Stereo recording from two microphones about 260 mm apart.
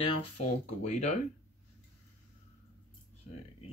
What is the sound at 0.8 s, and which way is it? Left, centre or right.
Speech, left.